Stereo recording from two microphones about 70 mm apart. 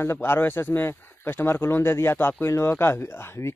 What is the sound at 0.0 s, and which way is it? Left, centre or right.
A man's voice, left.